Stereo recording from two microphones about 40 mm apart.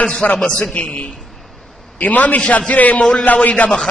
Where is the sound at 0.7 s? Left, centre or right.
Left.